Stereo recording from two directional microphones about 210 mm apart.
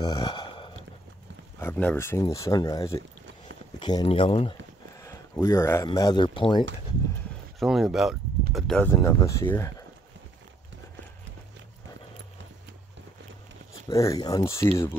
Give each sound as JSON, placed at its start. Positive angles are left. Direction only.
{"t": 0.0, "sound": "a sound", "side_deg": 20}
{"t": 1.6, "sound": "speech", "side_deg": 10}
{"t": 5.0, "sound": "a sound", "side_deg": 15}
{"t": 5.9, "sound": "speech", "side_deg": 20}
{"t": 7.5, "sound": "speech", "side_deg": 0}
{"t": 13.8, "sound": "speech", "side_deg": 15}